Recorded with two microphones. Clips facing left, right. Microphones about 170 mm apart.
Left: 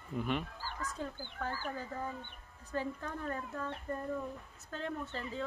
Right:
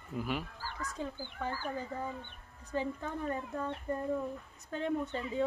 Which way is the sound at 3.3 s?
15° right (ahead or behind).